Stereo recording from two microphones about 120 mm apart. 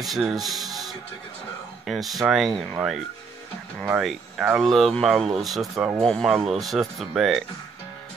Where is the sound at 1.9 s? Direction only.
Centre (ahead or behind).